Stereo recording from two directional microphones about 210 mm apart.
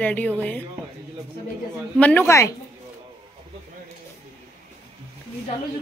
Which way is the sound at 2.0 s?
10° left (ahead or behind).